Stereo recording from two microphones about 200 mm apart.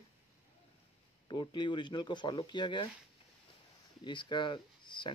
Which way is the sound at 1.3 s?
20° left (ahead or behind).